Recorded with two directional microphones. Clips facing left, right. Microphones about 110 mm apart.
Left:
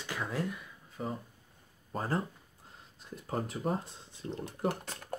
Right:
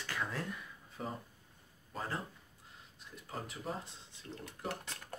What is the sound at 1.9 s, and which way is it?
Speech, 35° left (ahead or behind).